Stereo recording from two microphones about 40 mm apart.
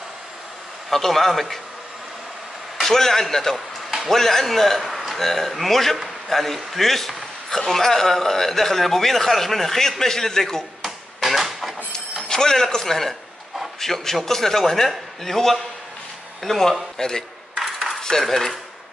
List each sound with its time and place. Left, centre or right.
0.8 s a man's voice: centre
2.8 s a man's voice: centre
3.5 s a sound: centre
4.1 s a man's voice: centre
10.8 s a sound: centre
12.3 s a man's voice: centre
17.6 s cutlery: centre
18.0 s a man's voice: centre